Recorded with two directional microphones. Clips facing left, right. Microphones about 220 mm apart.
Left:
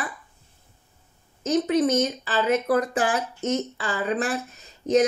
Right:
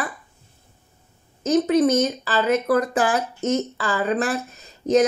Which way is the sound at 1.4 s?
40° right (ahead or behind).